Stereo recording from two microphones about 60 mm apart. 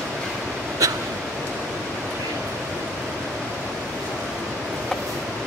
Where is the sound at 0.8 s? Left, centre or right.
Right.